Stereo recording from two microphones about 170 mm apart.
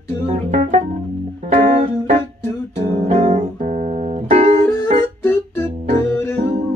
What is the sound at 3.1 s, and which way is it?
Music, 40° right (ahead or behind).